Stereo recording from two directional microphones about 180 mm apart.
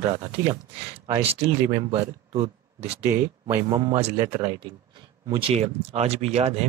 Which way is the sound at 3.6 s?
25° right (ahead or behind).